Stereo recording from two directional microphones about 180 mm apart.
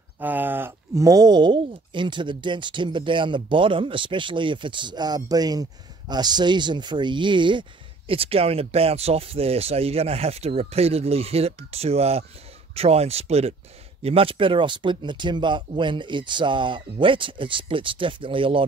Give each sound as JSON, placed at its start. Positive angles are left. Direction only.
{"t": 0.2, "sound": "speech", "side_deg": -10}